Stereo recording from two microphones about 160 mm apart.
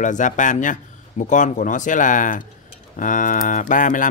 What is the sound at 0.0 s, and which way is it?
Speech, 50° left (ahead or behind).